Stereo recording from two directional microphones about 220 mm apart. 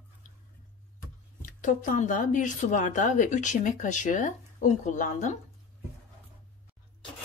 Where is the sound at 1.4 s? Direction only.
35° left (ahead or behind).